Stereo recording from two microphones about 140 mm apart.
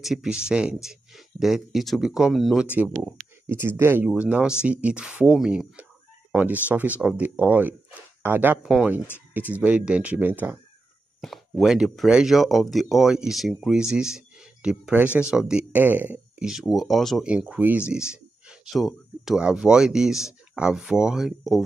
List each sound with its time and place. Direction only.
0.0 s speech: 5° right (ahead or behind)
8.6 s speech: 5° right (ahead or behind)
11.1 s speech: centre (ahead or behind)